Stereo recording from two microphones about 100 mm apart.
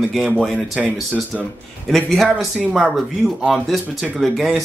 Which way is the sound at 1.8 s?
Centre (ahead or behind).